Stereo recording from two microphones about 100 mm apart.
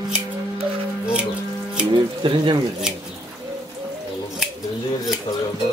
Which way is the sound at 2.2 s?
60° right (ahead or behind).